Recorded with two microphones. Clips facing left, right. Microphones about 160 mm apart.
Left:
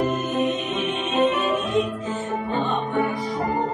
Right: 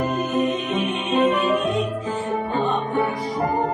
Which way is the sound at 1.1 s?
35° right (ahead or behind).